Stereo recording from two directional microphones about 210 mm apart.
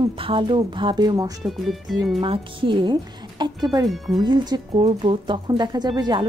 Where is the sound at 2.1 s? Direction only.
25° right (ahead or behind).